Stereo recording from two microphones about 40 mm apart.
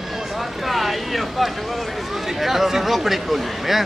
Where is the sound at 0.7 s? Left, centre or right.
Centre.